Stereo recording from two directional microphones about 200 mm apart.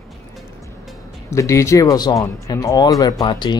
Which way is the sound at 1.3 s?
15° left (ahead or behind).